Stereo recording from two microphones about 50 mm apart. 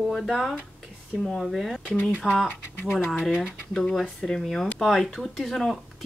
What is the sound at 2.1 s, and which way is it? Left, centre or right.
Speech, centre.